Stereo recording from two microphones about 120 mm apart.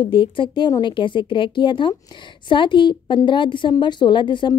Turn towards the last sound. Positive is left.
turn(degrees=40)  # may be behind; listen again after turning